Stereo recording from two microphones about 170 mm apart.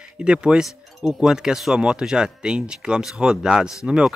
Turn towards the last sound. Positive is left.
turn(degrees=-5)  # may be behind; listen again after turning